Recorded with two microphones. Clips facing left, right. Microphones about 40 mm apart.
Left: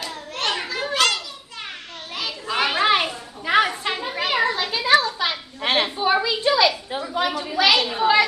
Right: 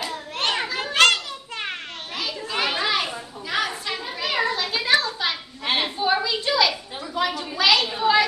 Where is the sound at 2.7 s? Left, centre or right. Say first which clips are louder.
Left 5 dB; left.